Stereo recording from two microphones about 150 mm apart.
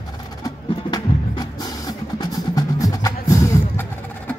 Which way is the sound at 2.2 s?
25° left (ahead or behind).